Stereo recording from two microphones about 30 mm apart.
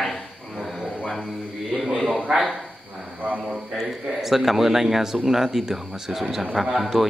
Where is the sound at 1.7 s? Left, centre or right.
Centre.